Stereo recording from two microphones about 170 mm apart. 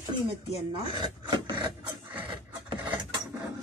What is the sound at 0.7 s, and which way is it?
Speech, 25° right (ahead or behind).